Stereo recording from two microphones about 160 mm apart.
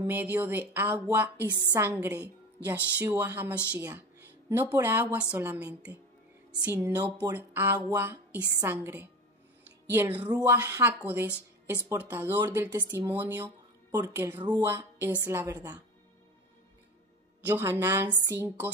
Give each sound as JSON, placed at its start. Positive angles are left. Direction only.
{"t": 0.0, "sound": "speech", "side_deg": -10}
{"t": 17.5, "sound": "speech", "side_deg": -15}